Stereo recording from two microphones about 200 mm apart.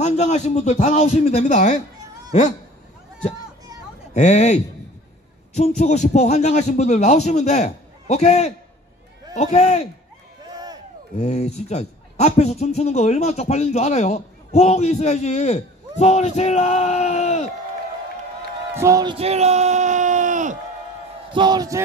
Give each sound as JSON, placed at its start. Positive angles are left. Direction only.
{"t": 0.0, "sound": "speech", "side_deg": 35}
{"t": 4.1, "sound": "speech", "side_deg": 35}
{"t": 5.6, "sound": "speech", "side_deg": 35}
{"t": 10.4, "sound": "a sound", "side_deg": -20}
{"t": 11.1, "sound": "speech", "side_deg": 35}
{"t": 18.8, "sound": "speech", "side_deg": -15}
{"t": 19.1, "sound": "a sound", "side_deg": -30}
{"t": 21.3, "sound": "speech", "side_deg": -20}